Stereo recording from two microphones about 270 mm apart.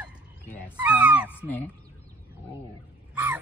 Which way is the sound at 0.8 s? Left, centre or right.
Centre.